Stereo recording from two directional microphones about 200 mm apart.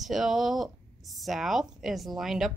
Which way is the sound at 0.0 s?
Centre (ahead or behind).